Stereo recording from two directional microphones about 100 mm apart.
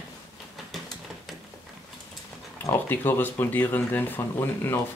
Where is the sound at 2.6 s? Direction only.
20° left (ahead or behind).